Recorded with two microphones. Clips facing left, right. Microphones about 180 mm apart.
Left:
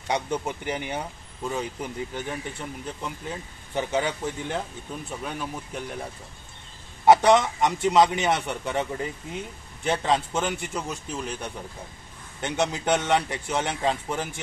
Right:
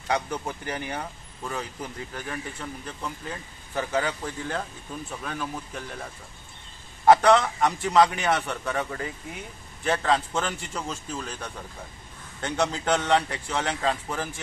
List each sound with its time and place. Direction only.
0.1 s a man's voice: 20° left (ahead or behind)
7.1 s a man's voice: 20° left (ahead or behind)